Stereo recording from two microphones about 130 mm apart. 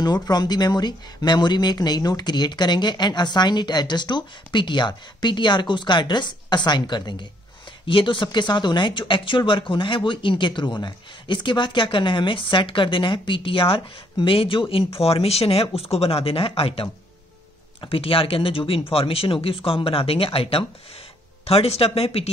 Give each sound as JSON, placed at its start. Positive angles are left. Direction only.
{"t": 0.0, "sound": "speech", "side_deg": 30}